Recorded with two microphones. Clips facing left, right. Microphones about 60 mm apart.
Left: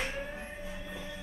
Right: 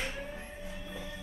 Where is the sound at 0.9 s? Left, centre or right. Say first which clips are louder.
Left 1 dB; centre.